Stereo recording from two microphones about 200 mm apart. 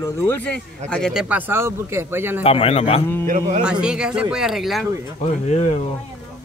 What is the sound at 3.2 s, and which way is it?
Speech, 40° right (ahead or behind).